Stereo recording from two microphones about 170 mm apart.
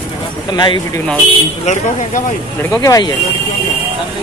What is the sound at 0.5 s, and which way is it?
Speech, 25° left (ahead or behind).